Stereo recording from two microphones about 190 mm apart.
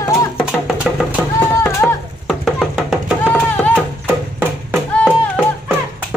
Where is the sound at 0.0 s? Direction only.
15° left (ahead or behind).